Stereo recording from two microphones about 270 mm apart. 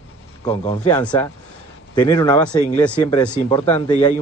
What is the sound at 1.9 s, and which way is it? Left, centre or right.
Speech, centre.